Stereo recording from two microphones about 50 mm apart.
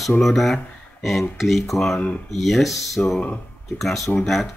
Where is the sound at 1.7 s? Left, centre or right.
Centre.